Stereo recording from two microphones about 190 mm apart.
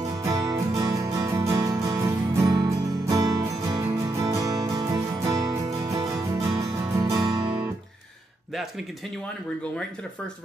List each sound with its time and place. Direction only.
0.2 s music: 20° right (ahead or behind)